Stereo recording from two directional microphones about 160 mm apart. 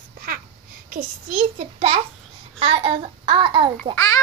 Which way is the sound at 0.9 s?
50° right (ahead or behind).